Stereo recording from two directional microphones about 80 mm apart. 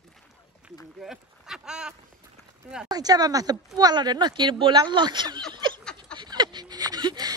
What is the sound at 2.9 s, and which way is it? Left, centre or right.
Speech, right.